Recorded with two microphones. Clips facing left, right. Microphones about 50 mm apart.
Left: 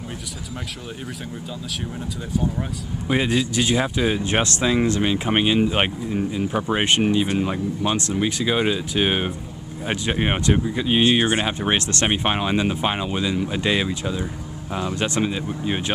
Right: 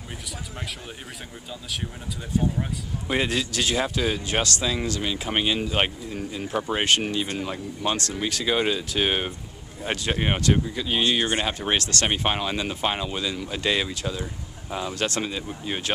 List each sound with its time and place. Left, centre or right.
3.1 s speech: centre
4.2 s speech: left; by 15.9 s centre